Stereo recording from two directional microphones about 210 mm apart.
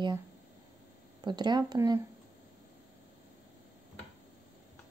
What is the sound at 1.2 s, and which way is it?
Speech, 20° right (ahead or behind).